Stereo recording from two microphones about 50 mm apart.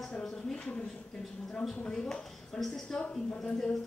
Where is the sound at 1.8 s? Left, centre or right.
Centre.